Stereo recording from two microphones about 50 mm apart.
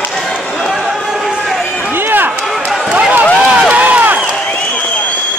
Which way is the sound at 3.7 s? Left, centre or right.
Right.